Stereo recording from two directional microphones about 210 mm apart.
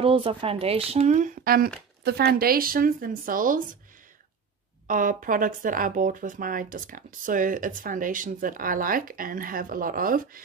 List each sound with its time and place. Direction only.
0.0 s a woman's voice: 25° right (ahead or behind); by 3.6 s 40° right (ahead or behind)
4.8 s speech: 40° right (ahead or behind)